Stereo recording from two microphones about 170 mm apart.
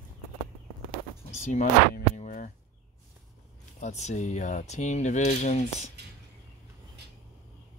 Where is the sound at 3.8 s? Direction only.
45° left (ahead or behind).